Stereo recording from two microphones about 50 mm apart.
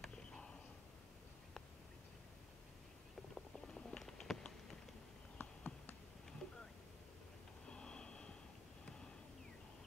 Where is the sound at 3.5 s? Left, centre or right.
Centre.